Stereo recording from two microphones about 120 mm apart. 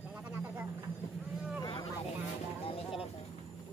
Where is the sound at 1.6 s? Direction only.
35° left (ahead or behind).